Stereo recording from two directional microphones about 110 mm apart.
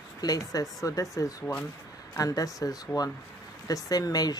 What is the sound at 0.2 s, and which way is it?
A woman's voice, 35° left (ahead or behind).